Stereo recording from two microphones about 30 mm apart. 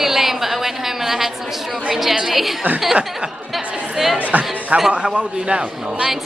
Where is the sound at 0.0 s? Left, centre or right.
Centre.